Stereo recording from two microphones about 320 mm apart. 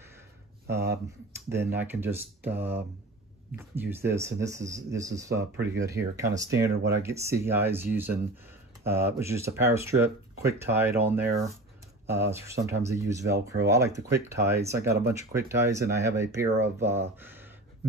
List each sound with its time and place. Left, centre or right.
0.7 s speech: right
1.5 s speech: centre